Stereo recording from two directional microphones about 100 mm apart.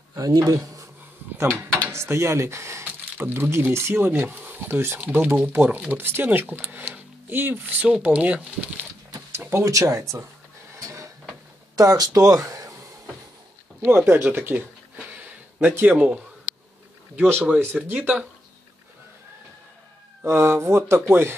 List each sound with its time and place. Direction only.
0.1 s speech: 35° right (ahead or behind)
1.9 s speech: 25° right (ahead or behind)
9.4 s speech: 30° right (ahead or behind)
10.8 s a sound: 30° right (ahead or behind)
11.7 s speech: 35° right (ahead or behind)
13.7 s speech: 25° right (ahead or behind)
15.6 s speech: 20° right (ahead or behind)
17.2 s speech: 20° right (ahead or behind)
20.2 s speech: 25° right (ahead or behind)